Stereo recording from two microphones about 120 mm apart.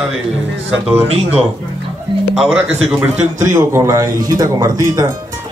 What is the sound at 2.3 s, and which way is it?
Speech, 5° right (ahead or behind).